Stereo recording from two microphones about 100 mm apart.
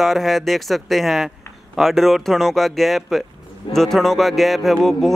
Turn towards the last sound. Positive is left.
turn(degrees=5)  # may be behind; listen again after turning